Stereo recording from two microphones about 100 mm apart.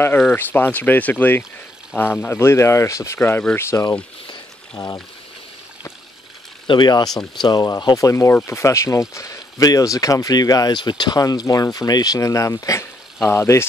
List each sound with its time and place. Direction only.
0.3 s speech: 20° left (ahead or behind)
3.2 s speech: 20° left (ahead or behind)
4.3 s a sound: 40° left (ahead or behind)
6.7 s speech: 45° left (ahead or behind); by 13.7 s 25° left (ahead or behind)